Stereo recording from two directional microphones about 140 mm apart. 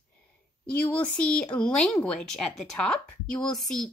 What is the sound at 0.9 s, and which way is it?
Speech, 10° left (ahead or behind).